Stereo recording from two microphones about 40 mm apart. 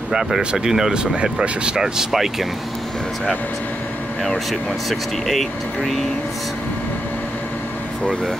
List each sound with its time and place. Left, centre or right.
0.1 s speech: centre
1.8 s speech: centre
4.2 s speech: centre